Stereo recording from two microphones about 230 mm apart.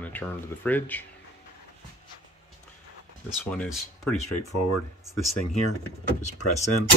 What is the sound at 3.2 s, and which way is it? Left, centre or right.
Speech, centre.